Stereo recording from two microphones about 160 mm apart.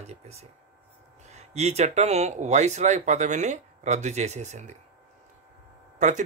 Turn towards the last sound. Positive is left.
turn(degrees=-50)  # may be behind; listen again after turning